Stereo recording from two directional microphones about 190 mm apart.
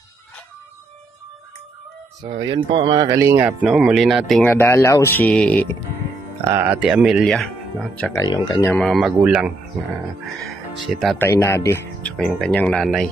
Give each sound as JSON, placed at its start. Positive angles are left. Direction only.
{"t": 2.2, "sound": "speech", "side_deg": -30}
{"t": 6.5, "sound": "speech", "side_deg": -10}
{"t": 8.2, "sound": "speech", "side_deg": 20}
{"t": 8.7, "sound": "speech", "side_deg": 0}
{"t": 11.1, "sound": "speech", "side_deg": 15}